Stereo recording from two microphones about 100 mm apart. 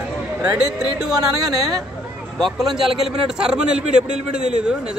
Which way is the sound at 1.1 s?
40° right (ahead or behind).